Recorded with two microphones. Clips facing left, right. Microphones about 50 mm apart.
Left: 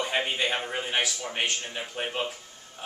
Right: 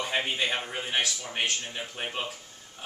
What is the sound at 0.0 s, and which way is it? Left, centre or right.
A man's voice, centre.